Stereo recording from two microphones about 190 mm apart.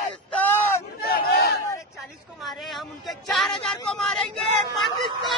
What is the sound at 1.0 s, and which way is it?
Battle cry, 55° left (ahead or behind).